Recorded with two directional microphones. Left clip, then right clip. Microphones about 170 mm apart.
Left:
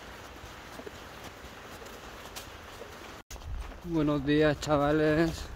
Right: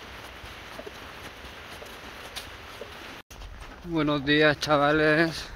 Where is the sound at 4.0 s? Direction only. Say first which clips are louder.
Right 4 dB; 20° left (ahead or behind).